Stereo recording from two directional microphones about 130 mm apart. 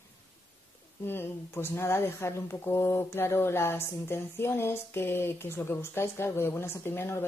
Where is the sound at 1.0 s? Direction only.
15° left (ahead or behind).